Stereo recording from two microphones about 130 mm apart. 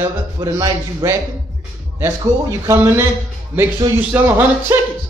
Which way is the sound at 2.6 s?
20° right (ahead or behind).